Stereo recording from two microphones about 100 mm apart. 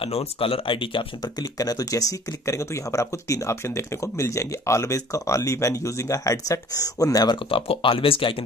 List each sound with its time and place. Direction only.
0.0 s speech: 80° left; by 1.0 s 60° left (ahead or behind)
1.2 s speech: 40° left (ahead or behind)
7.3 s speech: 65° left (ahead or behind)